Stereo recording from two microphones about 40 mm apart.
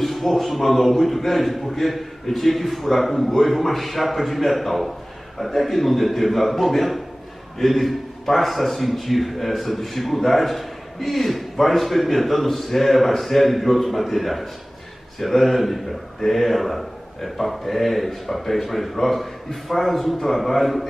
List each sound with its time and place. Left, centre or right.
0.0 s a man's voice: centre